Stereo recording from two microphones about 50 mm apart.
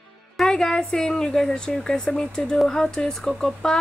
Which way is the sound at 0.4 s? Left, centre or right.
Centre.